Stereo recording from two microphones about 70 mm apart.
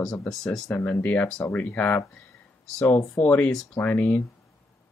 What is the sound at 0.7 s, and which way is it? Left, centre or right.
Speech, left.